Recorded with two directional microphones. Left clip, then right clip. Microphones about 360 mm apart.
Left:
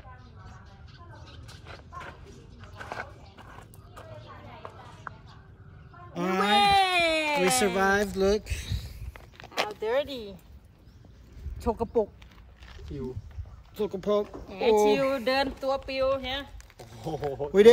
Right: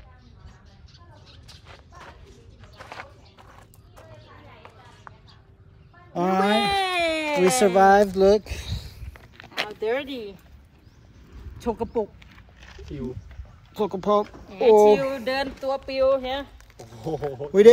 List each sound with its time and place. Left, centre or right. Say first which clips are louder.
1.7 s a sound: left 4 dB; centre
6.1 s a sound: right 6 dB; centre
6.6 s baby cry: left 1 dB; centre
7.4 s speech: right 11 dB; centre
9.1 s a sound: right 1 dB; left
9.9 s speech: left 1 dB; left
11.6 s speech: right 1 dB; left
13.7 s speech: right 5 dB; centre
15.0 s speech: even; left; by 16.4 s centre
16.7 s speech: right 5 dB; centre